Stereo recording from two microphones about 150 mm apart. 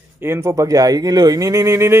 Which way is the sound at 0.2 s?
15° right (ahead or behind).